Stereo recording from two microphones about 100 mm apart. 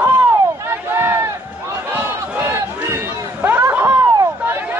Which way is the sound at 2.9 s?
20° right (ahead or behind).